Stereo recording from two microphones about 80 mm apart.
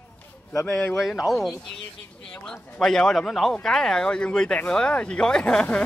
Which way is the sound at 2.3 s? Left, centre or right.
Centre.